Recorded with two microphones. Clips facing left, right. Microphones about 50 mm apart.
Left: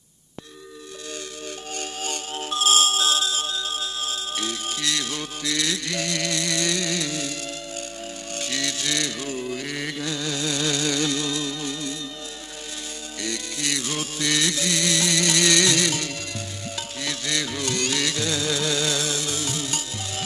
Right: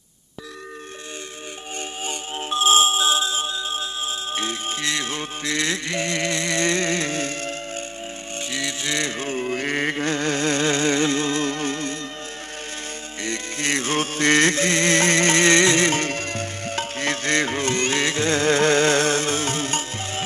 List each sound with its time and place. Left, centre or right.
2.0 s music: right
8.4 s music: right
13.2 s music: right